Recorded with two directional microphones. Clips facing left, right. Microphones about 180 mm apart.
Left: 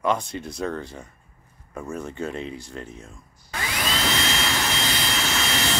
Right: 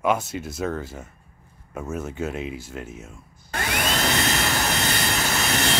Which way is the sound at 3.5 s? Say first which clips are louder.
Right 3 dB; 55° right (ahead or behind).